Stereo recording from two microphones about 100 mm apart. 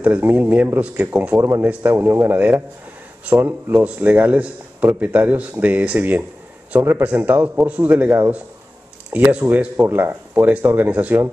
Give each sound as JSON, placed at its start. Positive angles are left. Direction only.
{"t": 0.0, "sound": "a man's voice", "side_deg": -15}
{"t": 1.4, "sound": "a man's voice", "side_deg": -25}
{"t": 9.1, "sound": "a man's voice", "side_deg": -20}